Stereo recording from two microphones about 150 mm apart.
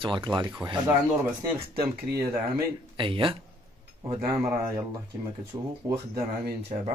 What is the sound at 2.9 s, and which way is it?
Speech, 35° right (ahead or behind).